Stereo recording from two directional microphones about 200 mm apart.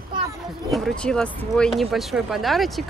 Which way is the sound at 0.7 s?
5° left (ahead or behind).